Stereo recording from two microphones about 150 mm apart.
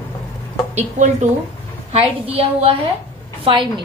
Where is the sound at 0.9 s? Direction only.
50° right (ahead or behind).